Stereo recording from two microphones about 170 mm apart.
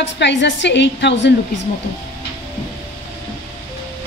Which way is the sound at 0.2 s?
90° left.